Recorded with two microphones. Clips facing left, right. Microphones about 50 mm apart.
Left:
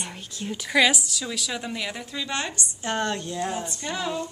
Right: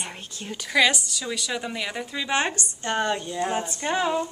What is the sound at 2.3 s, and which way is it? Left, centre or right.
Speech, right.